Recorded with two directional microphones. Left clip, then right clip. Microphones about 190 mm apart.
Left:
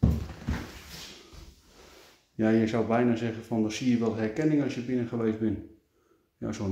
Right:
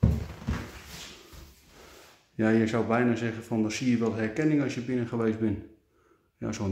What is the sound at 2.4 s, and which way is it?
Speech, 5° right (ahead or behind).